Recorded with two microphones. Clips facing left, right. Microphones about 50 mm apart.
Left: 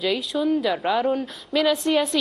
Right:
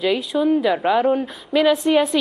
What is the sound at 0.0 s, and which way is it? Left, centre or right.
A woman's voice, centre.